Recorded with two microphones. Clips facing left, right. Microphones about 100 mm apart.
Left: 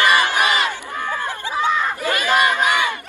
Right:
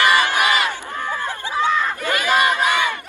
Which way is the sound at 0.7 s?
15° left (ahead or behind).